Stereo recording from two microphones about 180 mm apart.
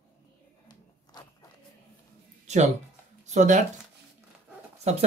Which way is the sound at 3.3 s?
40° right (ahead or behind).